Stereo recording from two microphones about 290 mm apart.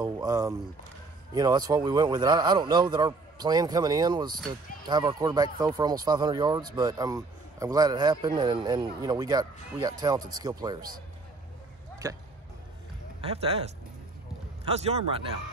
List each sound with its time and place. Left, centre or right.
0.0 s speech: centre
12.0 s speech: centre